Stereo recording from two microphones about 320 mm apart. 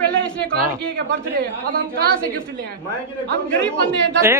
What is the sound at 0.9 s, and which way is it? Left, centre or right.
A man's voice, right.